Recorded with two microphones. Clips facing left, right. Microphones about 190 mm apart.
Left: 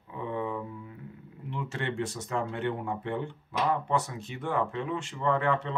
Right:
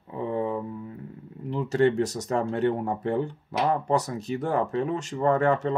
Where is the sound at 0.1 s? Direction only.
35° right (ahead or behind).